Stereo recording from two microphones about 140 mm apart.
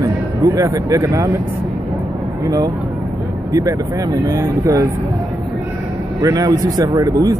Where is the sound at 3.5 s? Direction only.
25° right (ahead or behind).